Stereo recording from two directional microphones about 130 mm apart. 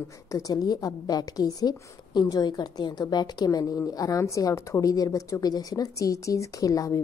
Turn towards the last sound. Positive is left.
turn(degrees=25)  # may be behind; listen again after turning